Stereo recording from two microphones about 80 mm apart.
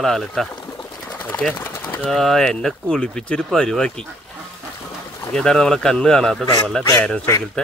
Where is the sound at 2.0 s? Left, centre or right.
Centre.